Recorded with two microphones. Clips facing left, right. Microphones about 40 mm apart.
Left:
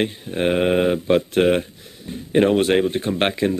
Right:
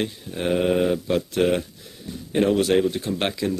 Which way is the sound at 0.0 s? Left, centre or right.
Left.